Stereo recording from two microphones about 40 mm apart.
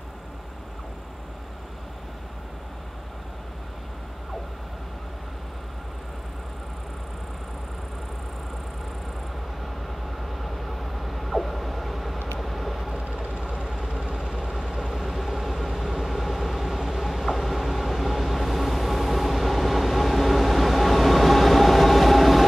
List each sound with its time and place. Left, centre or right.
10.2 s vehicle: centre
13.0 s vehicle: right
13.4 s vehicle: centre